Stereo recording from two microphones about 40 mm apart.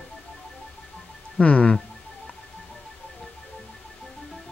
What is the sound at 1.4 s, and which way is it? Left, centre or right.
Speech, left.